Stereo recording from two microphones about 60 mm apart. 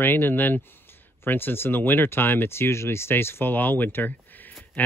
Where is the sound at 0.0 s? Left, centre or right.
Left.